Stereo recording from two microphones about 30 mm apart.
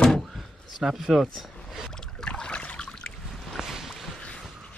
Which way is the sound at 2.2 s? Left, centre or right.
Left.